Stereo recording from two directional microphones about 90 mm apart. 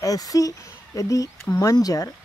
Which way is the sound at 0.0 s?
40° left (ahead or behind).